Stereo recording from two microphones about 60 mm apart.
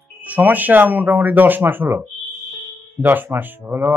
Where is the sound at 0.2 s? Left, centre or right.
Right.